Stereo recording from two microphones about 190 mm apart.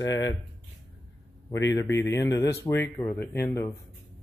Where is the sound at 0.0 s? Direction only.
15° left (ahead or behind).